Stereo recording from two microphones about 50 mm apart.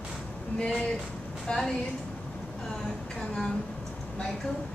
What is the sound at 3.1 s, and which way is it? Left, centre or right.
Vehicle, centre.